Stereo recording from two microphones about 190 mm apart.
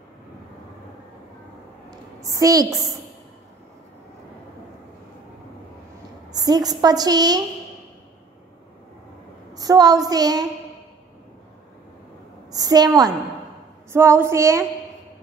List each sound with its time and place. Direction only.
1.9 s a woman's voice: 20° right (ahead or behind)
6.3 s a woman's voice: 20° right (ahead or behind)
9.5 s a woman's voice: 20° right (ahead or behind)
12.4 s a sound: 20° right (ahead or behind)
13.9 s speech: 15° right (ahead or behind)